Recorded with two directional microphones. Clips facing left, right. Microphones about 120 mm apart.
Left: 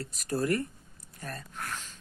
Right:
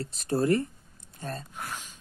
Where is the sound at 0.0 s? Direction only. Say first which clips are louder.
Right 4 dB; 25° right (ahead or behind).